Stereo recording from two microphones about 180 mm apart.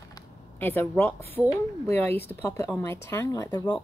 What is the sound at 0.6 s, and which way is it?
A woman's voice, 10° left (ahead or behind).